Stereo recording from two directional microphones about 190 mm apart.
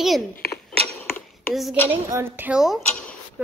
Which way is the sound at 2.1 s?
10° right (ahead or behind).